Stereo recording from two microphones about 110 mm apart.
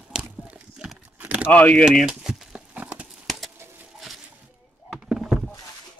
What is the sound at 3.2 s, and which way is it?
Clip-clop, centre (ahead or behind).